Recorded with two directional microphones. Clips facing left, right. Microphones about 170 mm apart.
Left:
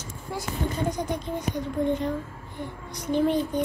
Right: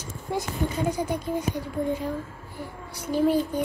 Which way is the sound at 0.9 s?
10° right (ahead or behind).